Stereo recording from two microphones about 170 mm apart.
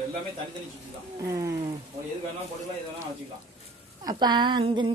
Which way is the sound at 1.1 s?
20° right (ahead or behind).